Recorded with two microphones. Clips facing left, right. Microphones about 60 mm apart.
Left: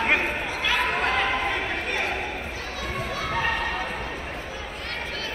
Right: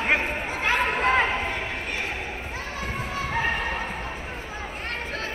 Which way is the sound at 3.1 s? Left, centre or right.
Right.